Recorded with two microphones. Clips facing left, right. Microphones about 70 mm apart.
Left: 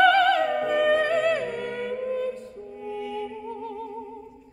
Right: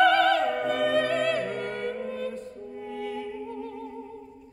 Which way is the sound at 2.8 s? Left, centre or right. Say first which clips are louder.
Left 2 dB; right.